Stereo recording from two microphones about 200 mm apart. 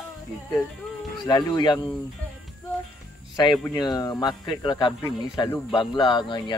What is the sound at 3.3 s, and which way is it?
Speech, 20° left (ahead or behind).